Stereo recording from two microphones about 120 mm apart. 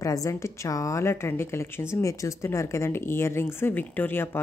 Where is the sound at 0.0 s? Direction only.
25° left (ahead or behind).